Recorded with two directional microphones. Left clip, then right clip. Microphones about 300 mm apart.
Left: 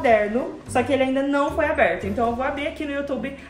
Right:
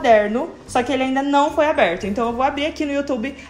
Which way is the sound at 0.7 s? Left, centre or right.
Centre.